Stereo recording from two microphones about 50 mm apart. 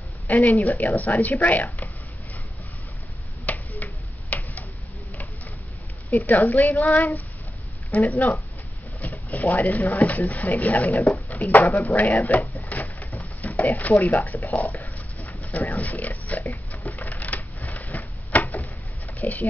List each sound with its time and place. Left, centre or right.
0.3 s speech: left
3.4 s tick-tock: left
6.0 s speech: left
7.9 s speech: left
12.6 s a sound: left